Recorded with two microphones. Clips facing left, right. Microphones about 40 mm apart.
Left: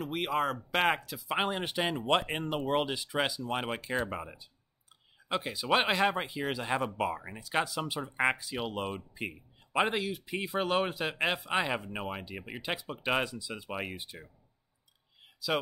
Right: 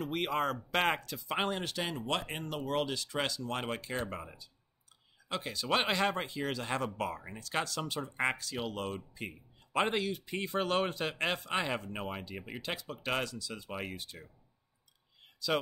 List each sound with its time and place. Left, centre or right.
0.0 s speech: centre
9.8 s speech: centre
15.4 s speech: centre